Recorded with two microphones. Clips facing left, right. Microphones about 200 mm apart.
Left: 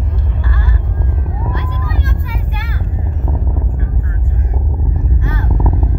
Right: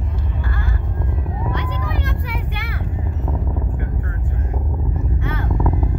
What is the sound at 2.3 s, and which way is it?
Vehicle, 65° right (ahead or behind).